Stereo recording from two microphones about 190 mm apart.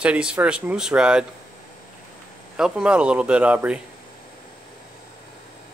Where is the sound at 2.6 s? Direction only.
5° right (ahead or behind).